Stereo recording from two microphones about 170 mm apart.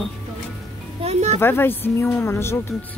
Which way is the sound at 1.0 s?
40° right (ahead or behind).